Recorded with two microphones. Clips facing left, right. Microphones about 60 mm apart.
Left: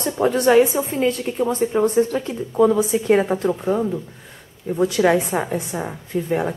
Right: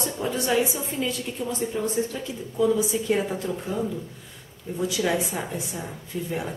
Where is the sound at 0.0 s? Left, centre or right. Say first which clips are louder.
Left 9 dB; left.